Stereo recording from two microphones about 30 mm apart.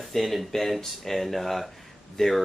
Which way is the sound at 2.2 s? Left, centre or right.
Centre.